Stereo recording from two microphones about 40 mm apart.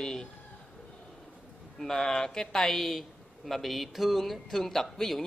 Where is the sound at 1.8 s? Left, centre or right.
Centre.